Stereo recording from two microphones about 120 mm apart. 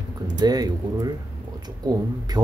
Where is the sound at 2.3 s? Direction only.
35° right (ahead or behind).